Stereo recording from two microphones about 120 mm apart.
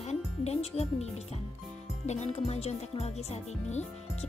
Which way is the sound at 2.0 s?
65° left (ahead or behind).